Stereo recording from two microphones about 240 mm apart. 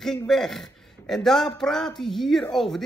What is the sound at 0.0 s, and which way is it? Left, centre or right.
A man's voice, centre.